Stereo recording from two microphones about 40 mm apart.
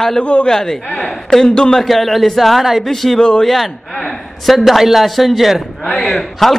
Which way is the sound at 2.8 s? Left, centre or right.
Centre.